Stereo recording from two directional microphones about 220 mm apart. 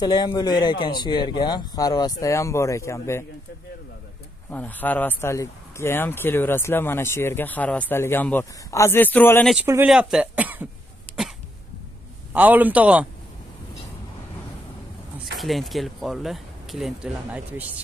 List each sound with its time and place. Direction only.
0.0 s speech: 20° left (ahead or behind)
4.5 s speech: 5° left (ahead or behind)
9.5 s speech: 5° right (ahead or behind)
12.3 s speech: 5° right (ahead or behind)
15.3 s speech: centre (ahead or behind)